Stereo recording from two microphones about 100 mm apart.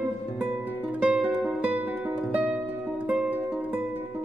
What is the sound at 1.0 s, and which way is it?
Music, 5° right (ahead or behind).